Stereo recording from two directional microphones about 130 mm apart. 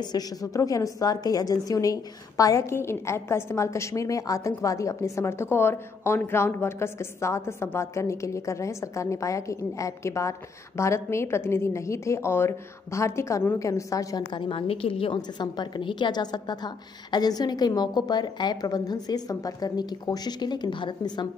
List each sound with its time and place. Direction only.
0.0 s a woman's voice: 30° left (ahead or behind)